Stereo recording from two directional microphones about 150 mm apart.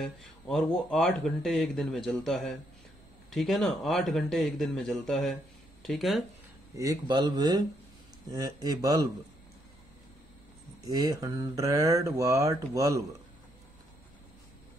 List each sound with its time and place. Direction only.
0.0 s speech: centre (ahead or behind)
6.7 s speech: 20° right (ahead or behind)
10.9 s speech: 20° right (ahead or behind)